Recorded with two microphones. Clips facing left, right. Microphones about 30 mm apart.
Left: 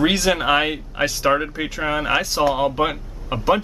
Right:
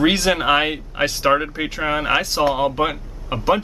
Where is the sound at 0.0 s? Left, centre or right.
Centre.